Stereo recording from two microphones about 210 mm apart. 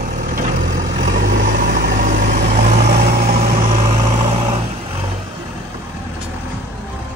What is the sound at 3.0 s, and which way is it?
Vehicle, 45° right (ahead or behind).